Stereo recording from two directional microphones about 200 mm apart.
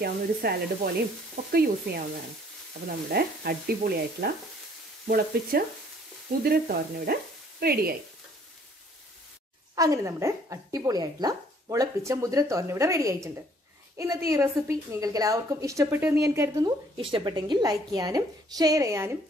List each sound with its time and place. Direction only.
0.0 s speech: 50° right (ahead or behind)
3.1 s speech: 50° right (ahead or behind)
9.8 s a woman's voice: 15° right (ahead or behind)